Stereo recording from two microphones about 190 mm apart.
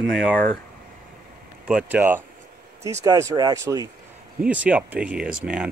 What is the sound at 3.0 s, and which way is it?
Speech, 20° right (ahead or behind).